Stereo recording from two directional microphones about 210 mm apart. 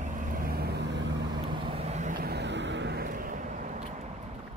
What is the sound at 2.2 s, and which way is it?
Vehicle, 50° right (ahead or behind).